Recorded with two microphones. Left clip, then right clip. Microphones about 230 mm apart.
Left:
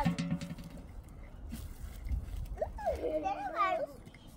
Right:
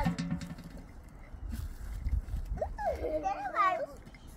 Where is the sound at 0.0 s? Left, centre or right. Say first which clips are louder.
Even; centre.